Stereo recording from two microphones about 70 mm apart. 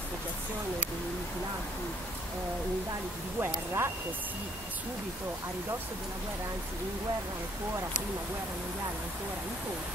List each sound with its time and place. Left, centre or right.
3.3 s speech: right